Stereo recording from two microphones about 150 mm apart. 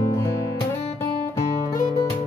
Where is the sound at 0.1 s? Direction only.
20° left (ahead or behind).